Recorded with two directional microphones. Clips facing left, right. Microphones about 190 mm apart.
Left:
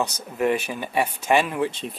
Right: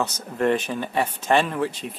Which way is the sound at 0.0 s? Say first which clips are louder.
Even; 10° left (ahead or behind).